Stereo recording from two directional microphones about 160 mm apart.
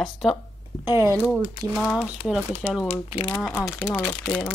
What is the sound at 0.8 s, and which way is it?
Speech, 15° right (ahead or behind).